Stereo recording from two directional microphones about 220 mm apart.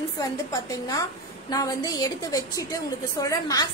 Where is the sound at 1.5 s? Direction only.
15° left (ahead or behind).